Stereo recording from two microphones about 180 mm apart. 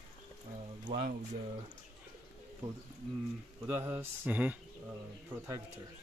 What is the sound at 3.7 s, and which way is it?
Speech, 15° right (ahead or behind).